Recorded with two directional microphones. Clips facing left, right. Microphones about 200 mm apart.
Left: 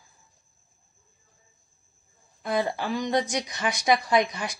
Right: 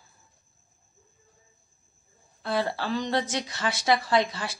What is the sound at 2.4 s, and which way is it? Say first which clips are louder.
A woman's voice: left 1 dB; 15° left (ahead or behind).